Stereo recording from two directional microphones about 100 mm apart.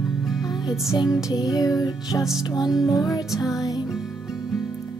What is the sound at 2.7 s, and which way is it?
Music, 5° right (ahead or behind).